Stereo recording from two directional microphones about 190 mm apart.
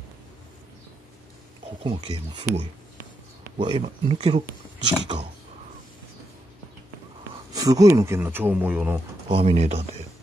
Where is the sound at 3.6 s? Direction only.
25° right (ahead or behind).